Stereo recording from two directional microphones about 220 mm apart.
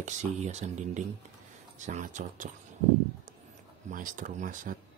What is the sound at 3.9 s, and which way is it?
Speech, 35° right (ahead or behind).